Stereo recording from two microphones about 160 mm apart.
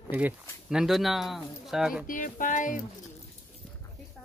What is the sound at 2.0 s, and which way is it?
Speech, 55° left (ahead or behind).